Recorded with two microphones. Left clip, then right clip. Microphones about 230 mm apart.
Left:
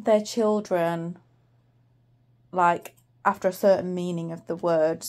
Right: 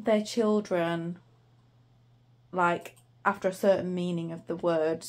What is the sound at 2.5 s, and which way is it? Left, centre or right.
Speech, left.